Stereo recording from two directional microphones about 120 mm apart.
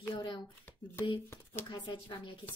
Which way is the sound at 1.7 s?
40° left (ahead or behind).